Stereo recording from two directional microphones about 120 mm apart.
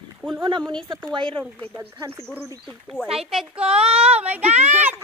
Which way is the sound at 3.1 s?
5° right (ahead or behind).